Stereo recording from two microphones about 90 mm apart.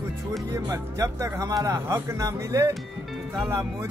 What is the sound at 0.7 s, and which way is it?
Speech, 35° right (ahead or behind).